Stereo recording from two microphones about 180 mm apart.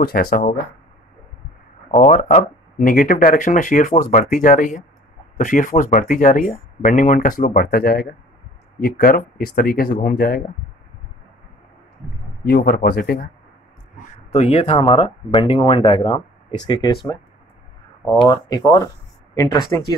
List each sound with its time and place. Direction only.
0.0 s speech: 60° left (ahead or behind)
1.9 s speech: 45° left (ahead or behind)
12.4 s speech: 60° left (ahead or behind)
14.3 s speech: 35° left (ahead or behind)